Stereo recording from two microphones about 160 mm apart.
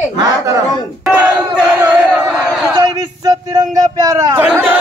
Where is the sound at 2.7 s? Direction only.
25° right (ahead or behind).